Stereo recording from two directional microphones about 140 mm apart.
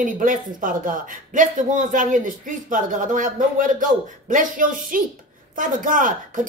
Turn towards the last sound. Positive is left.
turn(degrees=-70)  # may be behind; listen again after turning